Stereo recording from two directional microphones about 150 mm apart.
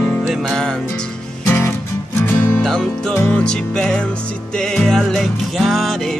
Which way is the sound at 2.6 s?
5° left (ahead or behind).